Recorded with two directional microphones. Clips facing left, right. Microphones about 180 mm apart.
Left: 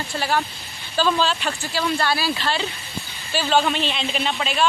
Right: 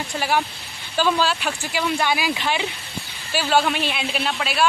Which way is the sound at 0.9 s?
10° right (ahead or behind).